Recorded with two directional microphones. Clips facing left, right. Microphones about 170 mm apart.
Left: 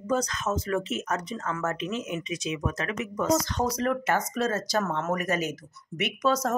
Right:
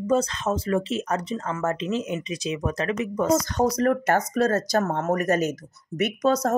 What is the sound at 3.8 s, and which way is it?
Speech, 45° right (ahead or behind).